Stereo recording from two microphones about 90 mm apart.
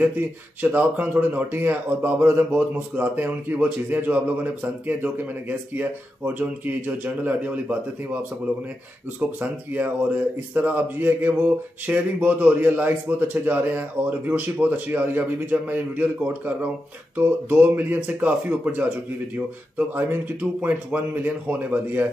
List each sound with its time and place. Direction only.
0.0 s a man's voice: 20° right (ahead or behind)
9.4 s a man's voice: 20° right (ahead or behind)
19.9 s a man's voice: 20° right (ahead or behind)